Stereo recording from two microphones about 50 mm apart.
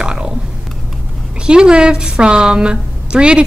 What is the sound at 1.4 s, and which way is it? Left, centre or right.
A woman's voice, centre.